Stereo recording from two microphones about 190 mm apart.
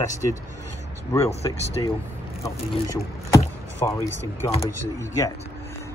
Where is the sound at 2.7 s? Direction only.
20° left (ahead or behind).